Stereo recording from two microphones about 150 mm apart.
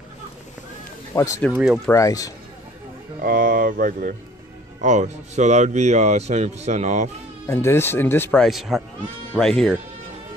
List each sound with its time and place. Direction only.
1.1 s speech: 20° left (ahead or behind)
3.2 s speech: 70° right (ahead or behind)
4.8 s a man's voice: 55° right (ahead or behind)
7.4 s speech: 15° left (ahead or behind)